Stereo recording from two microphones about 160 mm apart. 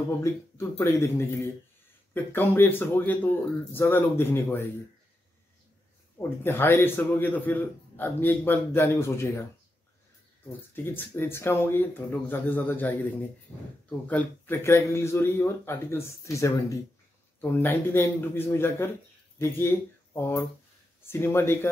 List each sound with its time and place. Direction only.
0.2 s a man's voice: 20° left (ahead or behind)
6.1 s a man's voice: 15° left (ahead or behind)
10.8 s a man's voice: 15° left (ahead or behind)